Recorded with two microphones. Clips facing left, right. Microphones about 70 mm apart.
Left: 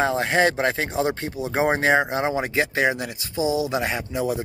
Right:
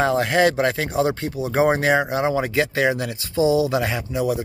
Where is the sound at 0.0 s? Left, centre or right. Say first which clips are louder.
Right 2 dB; left.